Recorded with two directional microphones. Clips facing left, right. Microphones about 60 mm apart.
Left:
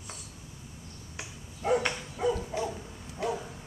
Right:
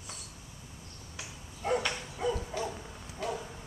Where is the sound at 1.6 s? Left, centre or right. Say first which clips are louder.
Left 4 dB; centre.